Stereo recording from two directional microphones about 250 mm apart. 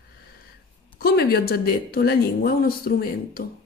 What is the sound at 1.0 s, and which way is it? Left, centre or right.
A woman's voice, left.